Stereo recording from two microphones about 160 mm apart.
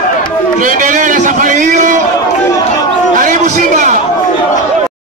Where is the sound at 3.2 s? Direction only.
50° right (ahead or behind).